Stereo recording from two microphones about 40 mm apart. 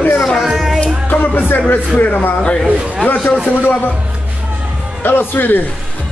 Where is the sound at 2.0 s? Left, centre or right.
Left.